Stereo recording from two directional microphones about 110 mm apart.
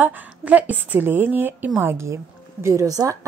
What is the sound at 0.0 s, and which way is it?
A woman's voice, 15° right (ahead or behind).